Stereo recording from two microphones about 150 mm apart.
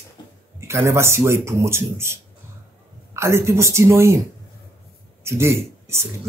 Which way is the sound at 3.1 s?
20° right (ahead or behind).